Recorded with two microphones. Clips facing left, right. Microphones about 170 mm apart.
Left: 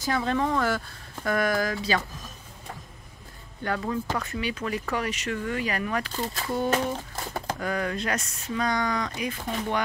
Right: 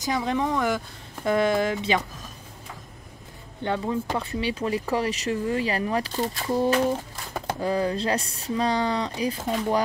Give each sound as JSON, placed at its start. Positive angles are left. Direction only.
{"t": 0.0, "sound": "speech", "side_deg": -15}
{"t": 3.6, "sound": "speech", "side_deg": -20}
{"t": 4.2, "sound": "speech", "side_deg": -30}